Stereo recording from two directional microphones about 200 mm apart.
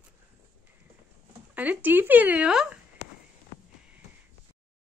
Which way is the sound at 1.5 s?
10° right (ahead or behind).